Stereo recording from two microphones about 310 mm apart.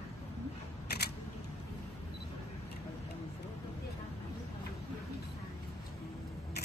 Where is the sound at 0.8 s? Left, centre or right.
Left.